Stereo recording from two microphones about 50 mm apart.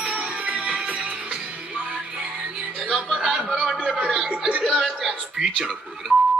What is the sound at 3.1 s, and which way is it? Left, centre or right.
Music, centre.